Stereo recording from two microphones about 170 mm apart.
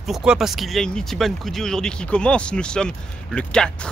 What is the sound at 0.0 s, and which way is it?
Speech, 5° right (ahead or behind).